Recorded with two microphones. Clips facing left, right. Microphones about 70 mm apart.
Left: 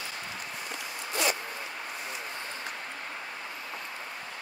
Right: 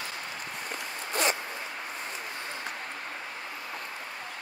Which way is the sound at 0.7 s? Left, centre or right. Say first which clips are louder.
Right 1 dB; right.